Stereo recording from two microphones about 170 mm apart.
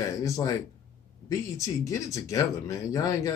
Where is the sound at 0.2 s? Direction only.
20° left (ahead or behind).